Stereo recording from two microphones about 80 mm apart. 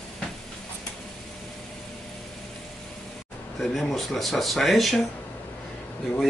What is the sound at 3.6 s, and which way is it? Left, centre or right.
A man's voice, centre.